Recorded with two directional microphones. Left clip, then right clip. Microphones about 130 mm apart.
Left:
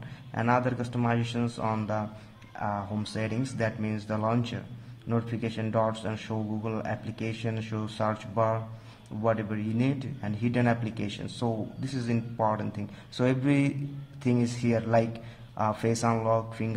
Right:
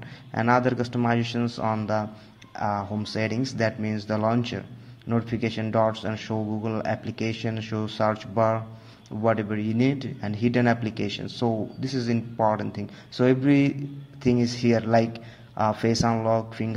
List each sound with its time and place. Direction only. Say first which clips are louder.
0.3 s speech: right 5 dB; 25° right (ahead or behind)